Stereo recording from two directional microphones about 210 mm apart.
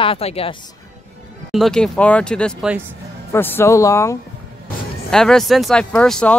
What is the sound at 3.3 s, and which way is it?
Speech, 10° left (ahead or behind).